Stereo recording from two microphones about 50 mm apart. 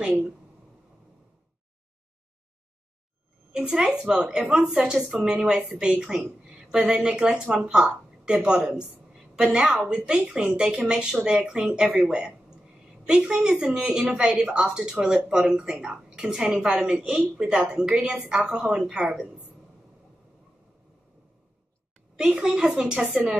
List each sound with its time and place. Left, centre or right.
3.5 s speech: centre
7.4 s a woman's voice: right
16.1 s a sound: centre
16.6 s speech: centre
22.1 s speech: centre